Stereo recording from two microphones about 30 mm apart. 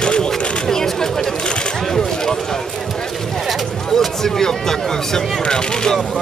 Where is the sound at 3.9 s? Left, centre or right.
Centre.